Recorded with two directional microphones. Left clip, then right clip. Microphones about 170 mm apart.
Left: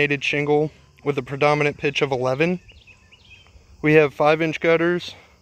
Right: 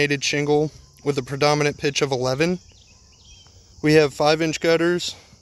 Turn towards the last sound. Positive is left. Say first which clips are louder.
# even
turn(degrees=-10)  # may be behind; listen again after turning